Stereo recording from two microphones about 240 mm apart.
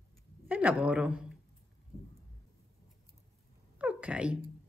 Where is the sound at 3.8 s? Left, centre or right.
Centre.